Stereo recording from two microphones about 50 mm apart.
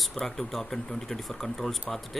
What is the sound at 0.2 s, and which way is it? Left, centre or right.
Speech, centre.